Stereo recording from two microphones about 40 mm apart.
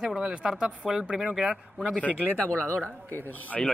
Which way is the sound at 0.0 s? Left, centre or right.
Centre.